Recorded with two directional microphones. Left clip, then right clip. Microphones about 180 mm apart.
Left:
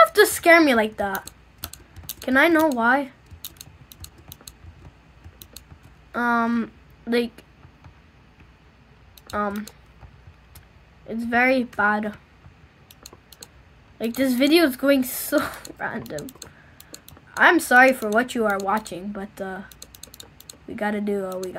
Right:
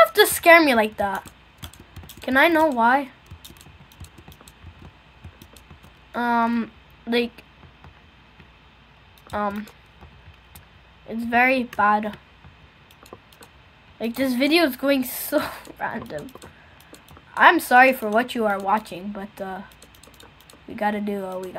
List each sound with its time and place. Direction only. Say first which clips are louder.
0.0 s a woman's voice: even; centre (ahead or behind)
1.2 s typing: left 2 dB; 70° left (ahead or behind)
2.2 s speech: even; centre (ahead or behind)
6.1 s speech: even; centre (ahead or behind)
9.3 s speech: even; centre (ahead or behind)
11.1 s speech: right 1 dB; centre (ahead or behind)
13.9 s speech: left 1 dB; centre (ahead or behind)
17.3 s speech: right 1 dB; centre (ahead or behind)
19.8 s typing: left 3 dB; 70° left (ahead or behind)
20.7 s speech: even; centre (ahead or behind)